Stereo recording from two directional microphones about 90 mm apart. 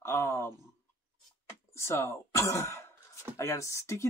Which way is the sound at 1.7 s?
30° left (ahead or behind).